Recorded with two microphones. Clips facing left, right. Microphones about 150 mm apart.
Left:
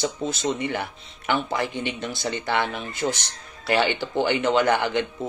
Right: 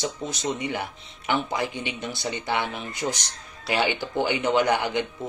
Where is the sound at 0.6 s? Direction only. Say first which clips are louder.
Left 2 dB; 15° right (ahead or behind).